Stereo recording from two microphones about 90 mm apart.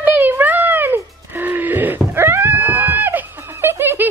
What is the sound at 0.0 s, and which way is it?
Music, 20° right (ahead or behind).